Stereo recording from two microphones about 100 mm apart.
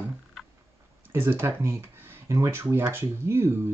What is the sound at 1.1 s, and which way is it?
Speech, 25° right (ahead or behind).